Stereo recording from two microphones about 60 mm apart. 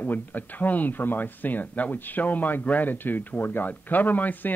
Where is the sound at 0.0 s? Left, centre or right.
Left.